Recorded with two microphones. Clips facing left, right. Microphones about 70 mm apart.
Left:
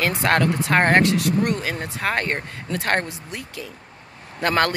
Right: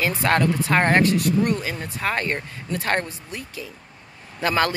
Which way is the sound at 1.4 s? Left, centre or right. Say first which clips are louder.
Even; left.